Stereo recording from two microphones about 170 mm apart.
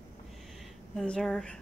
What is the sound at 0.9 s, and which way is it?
Speech, 5° left (ahead or behind).